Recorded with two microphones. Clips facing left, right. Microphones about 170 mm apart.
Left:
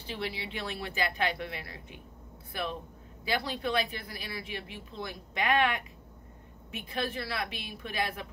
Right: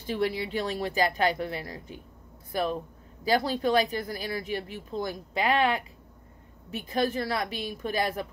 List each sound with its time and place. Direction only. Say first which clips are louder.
0.0 s speech: right 8 dB; 45° right (ahead or behind)